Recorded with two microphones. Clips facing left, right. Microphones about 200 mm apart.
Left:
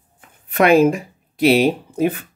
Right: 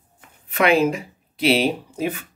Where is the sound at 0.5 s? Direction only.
45° left (ahead or behind).